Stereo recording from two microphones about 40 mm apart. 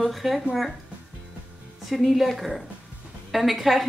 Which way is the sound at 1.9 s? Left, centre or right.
Centre.